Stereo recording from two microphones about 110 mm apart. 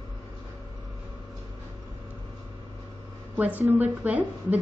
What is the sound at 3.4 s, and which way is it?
A woman's voice, 15° right (ahead or behind).